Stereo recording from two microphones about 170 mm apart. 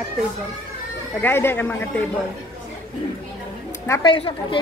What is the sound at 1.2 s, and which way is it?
Speech, 15° left (ahead or behind).